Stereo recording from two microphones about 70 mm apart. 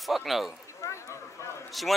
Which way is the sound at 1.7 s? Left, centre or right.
Centre.